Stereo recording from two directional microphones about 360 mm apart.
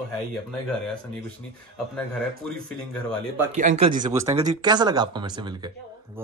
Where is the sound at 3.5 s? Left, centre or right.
Centre.